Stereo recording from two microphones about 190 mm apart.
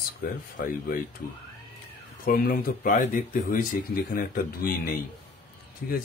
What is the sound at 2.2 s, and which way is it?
Speech, 50° left (ahead or behind).